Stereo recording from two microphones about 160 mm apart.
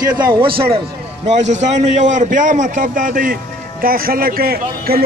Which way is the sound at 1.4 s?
50° right (ahead or behind).